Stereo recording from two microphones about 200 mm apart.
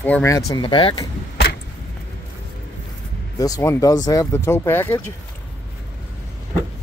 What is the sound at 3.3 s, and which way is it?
Speech, 20° left (ahead or behind).